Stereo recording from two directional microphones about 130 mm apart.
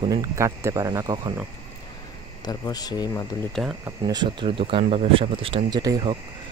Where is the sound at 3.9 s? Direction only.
30° right (ahead or behind).